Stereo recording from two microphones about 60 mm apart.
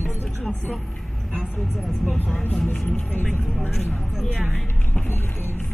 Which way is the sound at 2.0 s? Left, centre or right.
Left.